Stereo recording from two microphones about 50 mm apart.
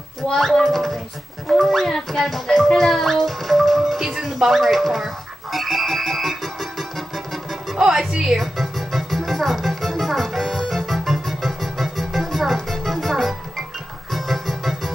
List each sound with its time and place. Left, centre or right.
0.4 s speech: centre
2.7 s music: centre
7.7 s music: centre